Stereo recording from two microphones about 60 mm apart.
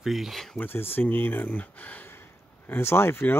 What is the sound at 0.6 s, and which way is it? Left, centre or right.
Speech, left.